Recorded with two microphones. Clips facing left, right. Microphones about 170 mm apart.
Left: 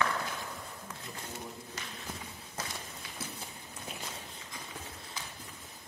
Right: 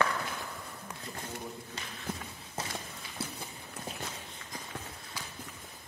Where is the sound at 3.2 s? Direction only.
30° right (ahead or behind).